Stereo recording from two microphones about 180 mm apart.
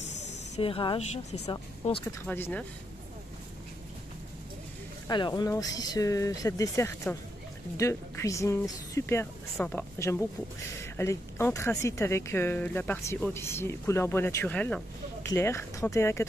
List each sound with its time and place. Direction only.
0.6 s a woman's voice: 30° left (ahead or behind)
2.2 s speech: 10° left (ahead or behind)
5.0 s speech: 25° left (ahead or behind)